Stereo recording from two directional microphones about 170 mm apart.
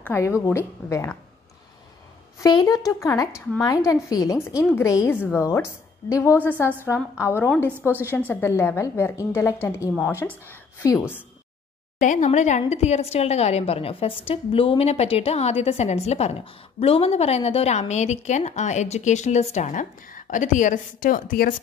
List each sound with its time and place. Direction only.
0.0 s a woman's voice: 15° left (ahead or behind)
2.4 s a woman's voice: 20° left (ahead or behind)
12.0 s a woman's voice: 45° left (ahead or behind)